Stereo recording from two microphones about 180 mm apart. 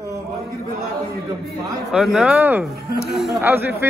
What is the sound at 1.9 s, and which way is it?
Speech, 5° right (ahead or behind).